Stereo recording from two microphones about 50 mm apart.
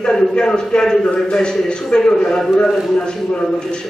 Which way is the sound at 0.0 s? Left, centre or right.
Centre.